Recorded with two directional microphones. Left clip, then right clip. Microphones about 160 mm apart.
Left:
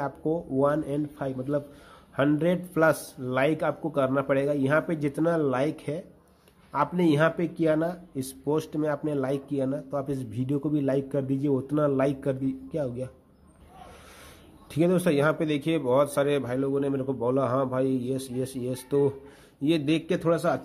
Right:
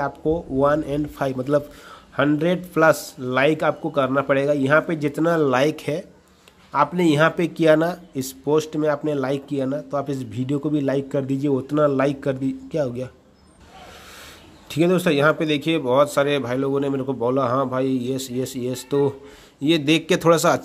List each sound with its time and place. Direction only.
0.0 s speech: 5° right (ahead or behind)
2.1 s speech: 5° right (ahead or behind)
14.7 s speech: 5° right (ahead or behind); by 20.6 s 30° right (ahead or behind)